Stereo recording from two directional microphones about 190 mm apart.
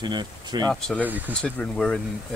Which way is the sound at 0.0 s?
25° right (ahead or behind).